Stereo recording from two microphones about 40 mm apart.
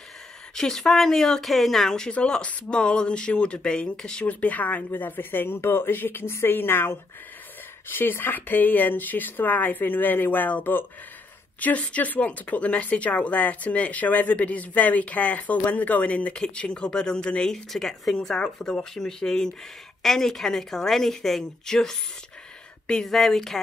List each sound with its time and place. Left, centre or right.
0.6 s a woman's voice: centre
2.0 s speech: left
4.3 s speech: left
4.9 s speech: left
11.8 s speech: left
16.4 s a woman's voice: left
18.3 s a woman's voice: left
23.0 s a woman's voice: centre